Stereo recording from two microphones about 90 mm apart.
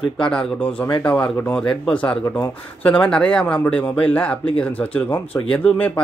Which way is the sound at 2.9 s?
10° left (ahead or behind).